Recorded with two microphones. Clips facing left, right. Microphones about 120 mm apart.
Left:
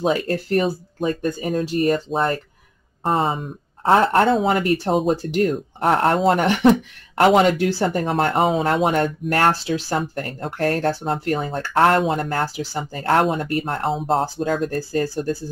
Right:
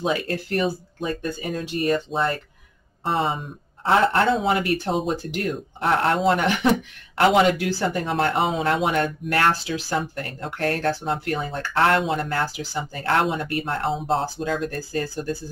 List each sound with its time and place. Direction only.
0.0 s speech: 35° left (ahead or behind)